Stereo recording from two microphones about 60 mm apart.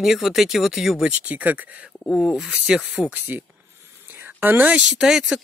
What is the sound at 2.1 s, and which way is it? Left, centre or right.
Speech, centre.